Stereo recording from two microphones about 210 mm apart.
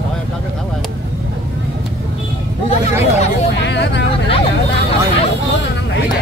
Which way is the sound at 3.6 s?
55° left (ahead or behind).